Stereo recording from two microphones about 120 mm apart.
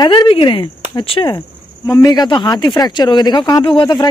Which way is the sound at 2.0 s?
30° left (ahead or behind).